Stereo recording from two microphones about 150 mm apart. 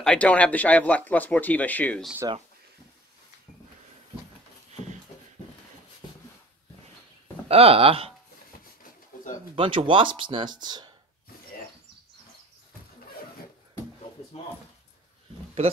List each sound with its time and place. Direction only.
0.0 s speech: 5° left (ahead or behind)
7.4 s speech: 40° right (ahead or behind)
9.6 s speech: 35° right (ahead or behind)